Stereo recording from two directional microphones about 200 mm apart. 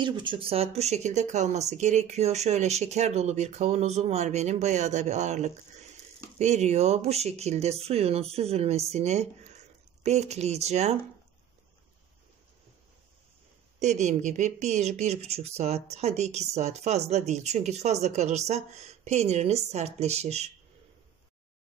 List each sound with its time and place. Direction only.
0.0 s speech: 25° right (ahead or behind)
13.7 s speech: 35° right (ahead or behind)